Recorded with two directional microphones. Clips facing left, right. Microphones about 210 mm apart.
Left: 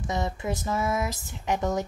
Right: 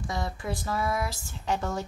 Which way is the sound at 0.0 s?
20° left (ahead or behind).